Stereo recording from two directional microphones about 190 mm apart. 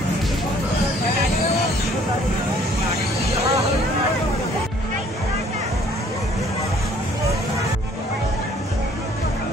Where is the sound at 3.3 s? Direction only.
35° right (ahead or behind).